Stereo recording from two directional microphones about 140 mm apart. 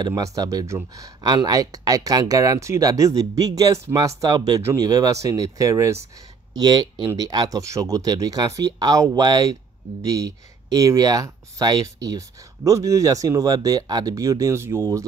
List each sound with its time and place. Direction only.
0.0 s speech: 25° right (ahead or behind)